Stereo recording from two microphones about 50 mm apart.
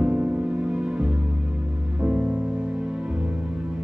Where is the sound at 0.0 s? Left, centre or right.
Right.